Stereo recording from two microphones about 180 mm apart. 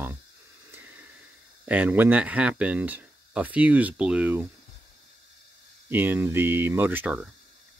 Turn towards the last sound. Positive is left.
turn(degrees=-10)  # may be behind; listen again after turning